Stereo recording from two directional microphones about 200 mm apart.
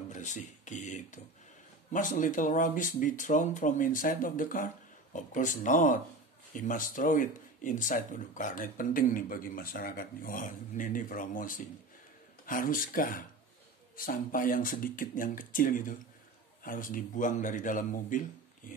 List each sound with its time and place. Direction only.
0.1 s speech: 40° left (ahead or behind)